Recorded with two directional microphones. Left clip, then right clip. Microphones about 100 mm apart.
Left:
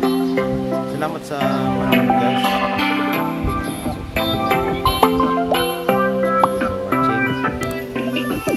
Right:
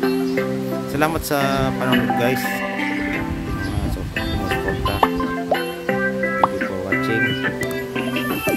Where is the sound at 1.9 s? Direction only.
40° left (ahead or behind).